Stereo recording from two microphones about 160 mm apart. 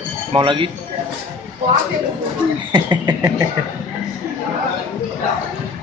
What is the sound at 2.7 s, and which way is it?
Speech, 25° right (ahead or behind).